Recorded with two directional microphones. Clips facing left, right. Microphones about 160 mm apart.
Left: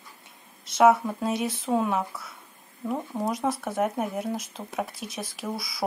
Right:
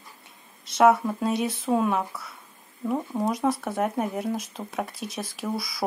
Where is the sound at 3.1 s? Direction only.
15° right (ahead or behind).